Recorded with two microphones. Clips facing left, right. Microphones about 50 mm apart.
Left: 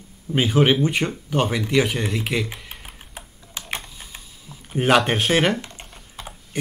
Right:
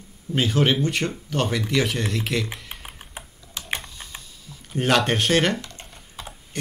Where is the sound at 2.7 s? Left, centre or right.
Centre.